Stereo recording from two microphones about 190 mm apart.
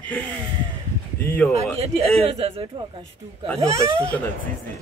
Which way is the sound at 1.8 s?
30° right (ahead or behind).